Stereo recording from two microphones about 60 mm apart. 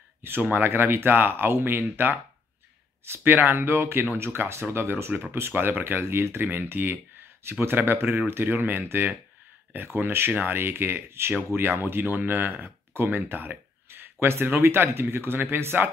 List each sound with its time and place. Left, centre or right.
0.2 s speech: right